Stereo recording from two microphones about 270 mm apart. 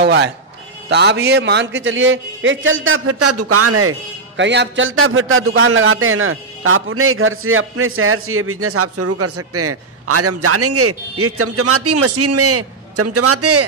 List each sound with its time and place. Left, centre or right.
0.0 s a man's voice: right
4.4 s a man's voice: right